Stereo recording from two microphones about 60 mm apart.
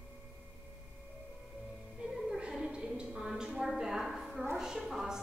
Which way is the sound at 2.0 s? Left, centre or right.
Centre.